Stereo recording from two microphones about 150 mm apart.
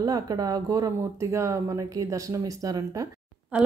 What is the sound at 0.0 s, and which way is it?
Speech, 25° right (ahead or behind).